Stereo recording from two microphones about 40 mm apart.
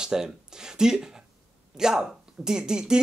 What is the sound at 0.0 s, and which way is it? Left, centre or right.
Speech, centre.